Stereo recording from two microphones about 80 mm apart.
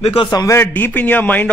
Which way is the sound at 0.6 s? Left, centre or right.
Left.